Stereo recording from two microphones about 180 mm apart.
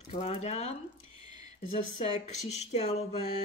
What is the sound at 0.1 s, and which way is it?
Speech, 35° left (ahead or behind).